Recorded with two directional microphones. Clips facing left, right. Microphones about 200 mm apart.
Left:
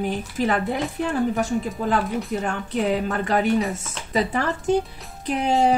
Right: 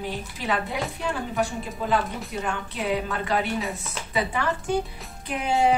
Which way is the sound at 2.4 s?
45° left (ahead or behind).